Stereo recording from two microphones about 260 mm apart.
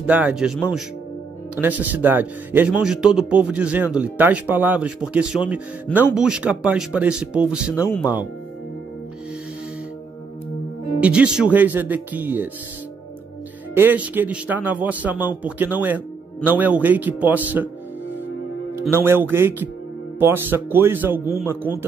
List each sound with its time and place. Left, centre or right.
0.0 s a man's voice: centre
1.6 s a man's voice: centre
11.0 s a man's voice: centre
13.7 s a man's voice: centre
18.8 s a man's voice: centre